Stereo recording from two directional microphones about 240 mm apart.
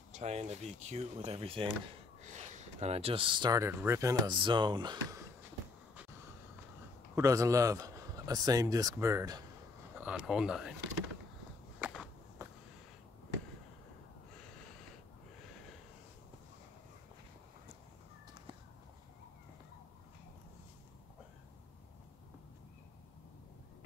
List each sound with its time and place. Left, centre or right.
0.1 s speech: right
7.2 s a man's voice: centre
11.8 s walk: centre